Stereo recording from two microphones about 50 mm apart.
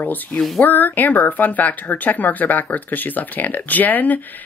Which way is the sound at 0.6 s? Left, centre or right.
Left.